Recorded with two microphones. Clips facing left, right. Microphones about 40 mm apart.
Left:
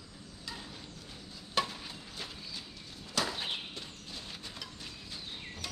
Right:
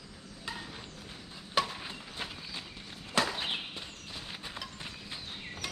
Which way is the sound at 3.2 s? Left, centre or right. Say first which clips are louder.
Right 4 dB; right.